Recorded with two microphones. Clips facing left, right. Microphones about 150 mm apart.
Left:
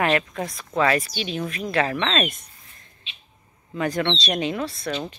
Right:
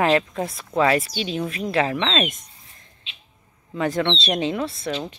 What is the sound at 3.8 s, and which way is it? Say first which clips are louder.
Speech: right 2 dB; 25° right (ahead or behind).